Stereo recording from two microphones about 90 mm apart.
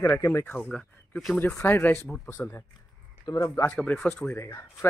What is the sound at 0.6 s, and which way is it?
Speech, 10° left (ahead or behind).